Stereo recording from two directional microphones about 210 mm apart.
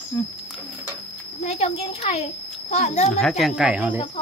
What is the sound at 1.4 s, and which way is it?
A child's voice, 30° left (ahead or behind).